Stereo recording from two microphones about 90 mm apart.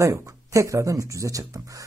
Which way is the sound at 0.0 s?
35° right (ahead or behind).